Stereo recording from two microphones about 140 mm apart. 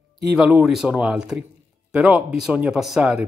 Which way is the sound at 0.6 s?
5° right (ahead or behind).